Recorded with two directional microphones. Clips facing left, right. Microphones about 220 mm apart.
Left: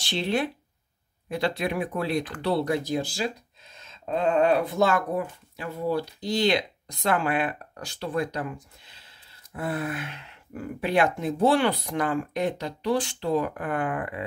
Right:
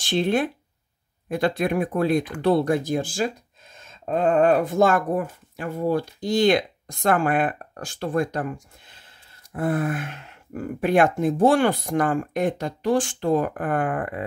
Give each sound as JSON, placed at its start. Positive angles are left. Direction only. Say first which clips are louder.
{"t": 0.0, "sound": "speech", "louder": "right 5 dB", "side_deg": -50}